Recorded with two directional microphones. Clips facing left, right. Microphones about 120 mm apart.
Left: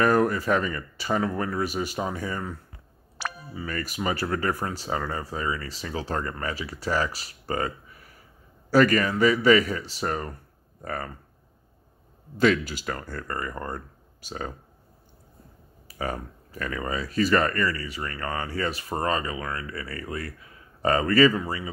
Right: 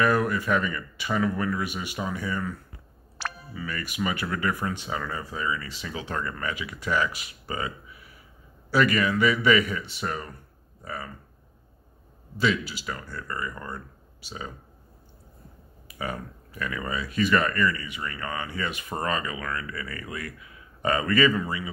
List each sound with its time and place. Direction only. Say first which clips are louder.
0.0 s speech: left 2 dB; 40° left (ahead or behind)
3.2 s a sound: left 1 dB; 10° left (ahead or behind)
3.5 s speech: left 1 dB; 40° left (ahead or behind)
12.4 s speech: left 4 dB; 45° left (ahead or behind)
15.9 s speech: left 2 dB; 40° left (ahead or behind)